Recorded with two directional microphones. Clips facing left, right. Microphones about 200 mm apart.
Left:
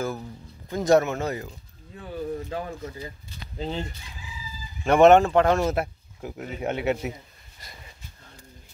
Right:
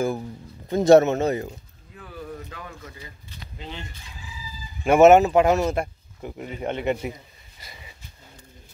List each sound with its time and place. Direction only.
0.7 s speech: 25° right (ahead or behind)
2.0 s a sound: 30° left (ahead or behind)
3.5 s speech: 35° left (ahead or behind)
4.8 s speech: 5° right (ahead or behind)
5.7 s speech: 5° left (ahead or behind)
7.6 s wheeze: centre (ahead or behind)